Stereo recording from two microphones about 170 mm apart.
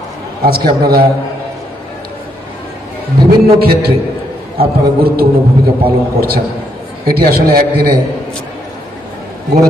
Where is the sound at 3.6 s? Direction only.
65° right (ahead or behind).